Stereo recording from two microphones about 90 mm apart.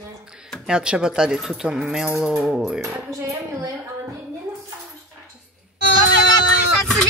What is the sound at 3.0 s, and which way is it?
Speech, 35° right (ahead or behind).